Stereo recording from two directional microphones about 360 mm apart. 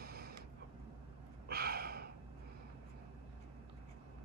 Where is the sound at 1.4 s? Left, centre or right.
Right.